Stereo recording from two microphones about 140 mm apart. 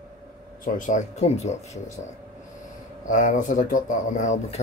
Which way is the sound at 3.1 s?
65° left (ahead or behind).